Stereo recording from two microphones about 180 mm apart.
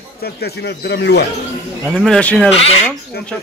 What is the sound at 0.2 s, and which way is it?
Speech, 65° left (ahead or behind).